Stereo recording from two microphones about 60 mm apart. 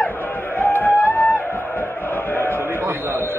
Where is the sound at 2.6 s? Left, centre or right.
Right.